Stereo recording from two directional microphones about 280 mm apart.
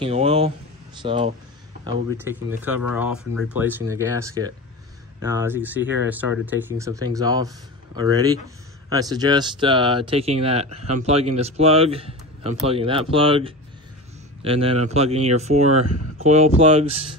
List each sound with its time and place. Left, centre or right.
0.0 s speech: right
1.9 s speech: centre